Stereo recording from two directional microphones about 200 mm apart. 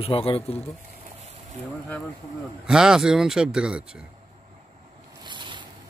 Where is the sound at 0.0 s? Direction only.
30° left (ahead or behind).